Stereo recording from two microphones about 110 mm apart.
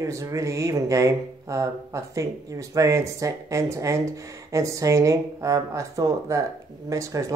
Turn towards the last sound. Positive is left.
turn(degrees=-30)  # may be behind; listen again after turning